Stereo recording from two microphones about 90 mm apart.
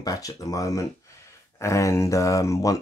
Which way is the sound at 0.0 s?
40° left (ahead or behind).